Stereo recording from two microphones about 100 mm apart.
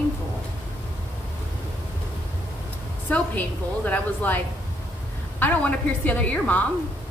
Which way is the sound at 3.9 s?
15° left (ahead or behind).